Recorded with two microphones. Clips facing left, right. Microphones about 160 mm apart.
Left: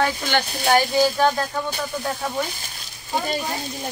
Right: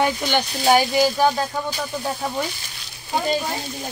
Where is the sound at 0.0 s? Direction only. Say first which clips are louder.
Right 1 dB; 15° right (ahead or behind).